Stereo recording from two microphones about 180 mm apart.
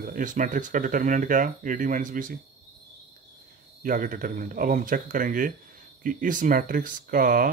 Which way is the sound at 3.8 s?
50° right (ahead or behind).